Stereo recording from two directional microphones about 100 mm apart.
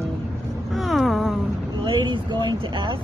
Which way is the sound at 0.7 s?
Centre (ahead or behind).